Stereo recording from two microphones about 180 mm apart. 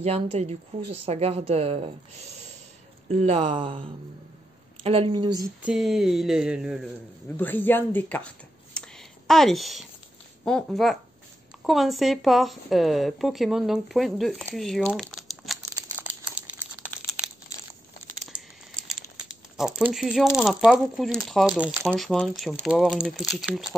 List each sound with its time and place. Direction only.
0.0 s a woman's voice: 35° right (ahead or behind)
5.6 s speech: 5° right (ahead or behind)
7.3 s speech: 10° left (ahead or behind)
8.7 s a sound: 5° left (ahead or behind)
10.4 s speech: centre (ahead or behind)
15.6 s crumpling: 15° right (ahead or behind)
19.2 s speech: centre (ahead or behind)
21.8 s speech: 5° left (ahead or behind)